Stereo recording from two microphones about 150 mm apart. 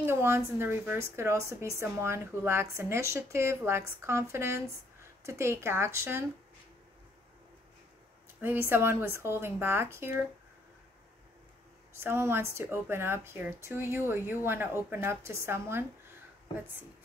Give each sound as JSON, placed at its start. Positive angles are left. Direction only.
{"t": 0.0, "sound": "a woman's voice", "side_deg": -15}
{"t": 8.4, "sound": "a woman's voice", "side_deg": -15}
{"t": 11.9, "sound": "a woman's voice", "side_deg": -15}